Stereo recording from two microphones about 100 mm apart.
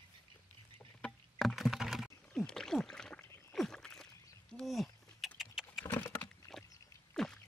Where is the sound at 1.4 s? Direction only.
Centre (ahead or behind).